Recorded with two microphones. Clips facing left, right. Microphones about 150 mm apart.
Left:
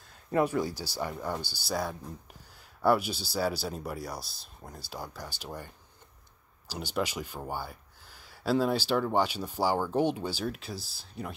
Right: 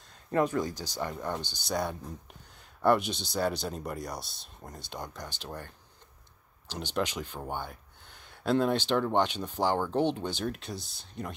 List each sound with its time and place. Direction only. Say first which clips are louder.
0.3 s speech: even; 10° left (ahead or behind)
6.7 s speech: even; 5° left (ahead or behind)